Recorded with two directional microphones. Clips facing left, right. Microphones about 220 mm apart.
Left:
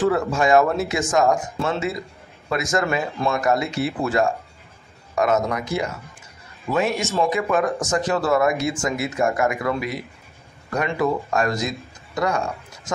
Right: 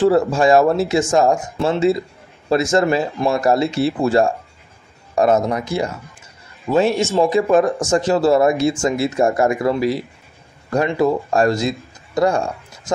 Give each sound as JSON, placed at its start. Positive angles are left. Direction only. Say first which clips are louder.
{"t": 0.0, "sound": "speech", "louder": "right 5 dB", "side_deg": -30}
{"t": 11.0, "sound": "speech", "louder": "right 5 dB", "side_deg": -30}